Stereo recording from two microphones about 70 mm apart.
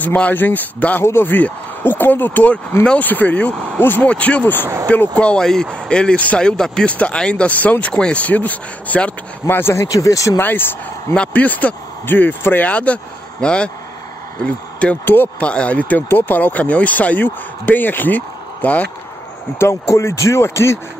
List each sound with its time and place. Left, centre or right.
0.0 s speech: left
9.8 s speech: left
10.4 s speech: left
15.0 s speech: left
15.4 s speech: centre
19.6 s speech: left